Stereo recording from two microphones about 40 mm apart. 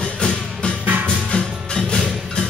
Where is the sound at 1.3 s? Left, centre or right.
Centre.